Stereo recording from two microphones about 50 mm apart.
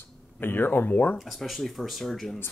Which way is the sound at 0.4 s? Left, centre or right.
Left.